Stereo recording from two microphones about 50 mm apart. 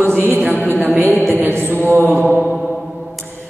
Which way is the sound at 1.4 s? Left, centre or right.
Right.